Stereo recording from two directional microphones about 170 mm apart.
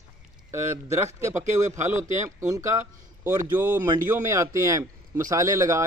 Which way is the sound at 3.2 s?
20° right (ahead or behind).